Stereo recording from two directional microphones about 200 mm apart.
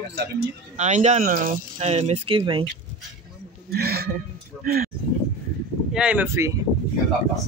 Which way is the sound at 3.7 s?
50° right (ahead or behind).